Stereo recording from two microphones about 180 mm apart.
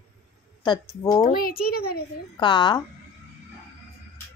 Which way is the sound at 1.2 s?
55° left (ahead or behind).